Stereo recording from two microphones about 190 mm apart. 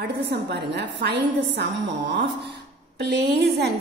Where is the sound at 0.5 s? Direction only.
60° right (ahead or behind).